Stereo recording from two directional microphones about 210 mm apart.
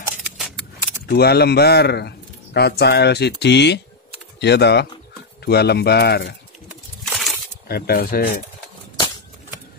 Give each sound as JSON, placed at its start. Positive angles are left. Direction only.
{"t": 1.0, "sound": "speech", "side_deg": 50}
{"t": 6.7, "sound": "a sound", "side_deg": 0}
{"t": 7.6, "sound": "speech", "side_deg": 45}